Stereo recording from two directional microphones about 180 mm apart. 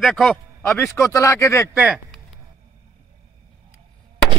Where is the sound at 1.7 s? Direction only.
5° right (ahead or behind).